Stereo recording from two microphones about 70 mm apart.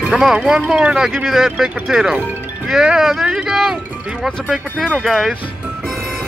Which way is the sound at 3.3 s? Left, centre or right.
Centre.